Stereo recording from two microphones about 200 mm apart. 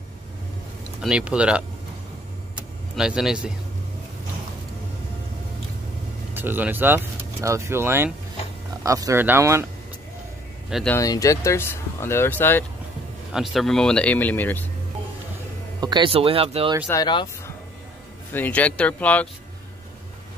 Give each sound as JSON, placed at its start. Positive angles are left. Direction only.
{"t": 1.0, "sound": "speech", "side_deg": -5}
{"t": 3.0, "sound": "speech", "side_deg": -5}
{"t": 6.3, "sound": "speech", "side_deg": -10}
{"t": 10.7, "sound": "speech", "side_deg": 0}
{"t": 11.0, "sound": "speech", "side_deg": 15}
{"t": 13.3, "sound": "speech", "side_deg": 0}
{"t": 15.8, "sound": "speech", "side_deg": -25}
{"t": 16.8, "sound": "speech", "side_deg": 20}
{"t": 18.3, "sound": "speech", "side_deg": 10}